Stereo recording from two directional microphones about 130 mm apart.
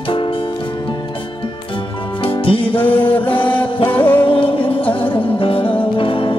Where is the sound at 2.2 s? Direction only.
45° left (ahead or behind).